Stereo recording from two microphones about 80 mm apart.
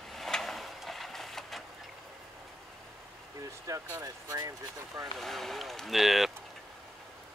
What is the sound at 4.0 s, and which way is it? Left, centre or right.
Speech, right.